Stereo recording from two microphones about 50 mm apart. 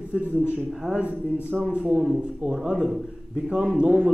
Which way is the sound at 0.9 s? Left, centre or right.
Right.